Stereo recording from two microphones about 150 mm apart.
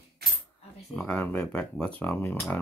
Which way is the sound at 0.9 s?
10° left (ahead or behind).